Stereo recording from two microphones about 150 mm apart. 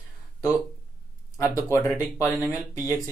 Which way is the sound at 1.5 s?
15° left (ahead or behind).